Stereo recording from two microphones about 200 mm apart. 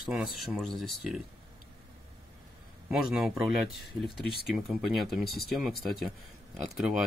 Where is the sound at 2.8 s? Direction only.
Centre (ahead or behind).